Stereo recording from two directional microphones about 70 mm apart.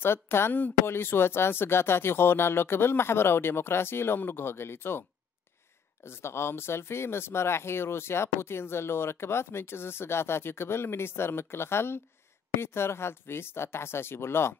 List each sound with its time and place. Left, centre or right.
0.0 s speech: left
6.0 s speech: left